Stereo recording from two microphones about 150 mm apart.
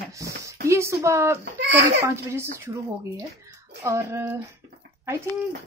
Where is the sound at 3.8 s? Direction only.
20° right (ahead or behind).